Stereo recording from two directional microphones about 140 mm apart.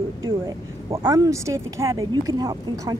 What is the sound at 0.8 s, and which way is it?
Speech, 25° right (ahead or behind).